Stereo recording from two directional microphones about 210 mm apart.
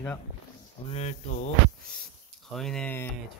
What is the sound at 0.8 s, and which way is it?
Speech, 30° left (ahead or behind).